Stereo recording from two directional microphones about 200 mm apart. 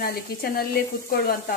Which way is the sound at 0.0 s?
45° left (ahead or behind).